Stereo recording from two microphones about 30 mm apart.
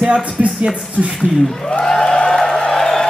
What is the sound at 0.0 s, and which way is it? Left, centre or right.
Speech, right.